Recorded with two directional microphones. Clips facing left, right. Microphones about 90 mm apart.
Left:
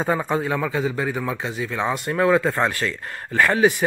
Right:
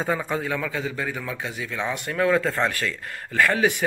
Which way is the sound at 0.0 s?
40° left (ahead or behind).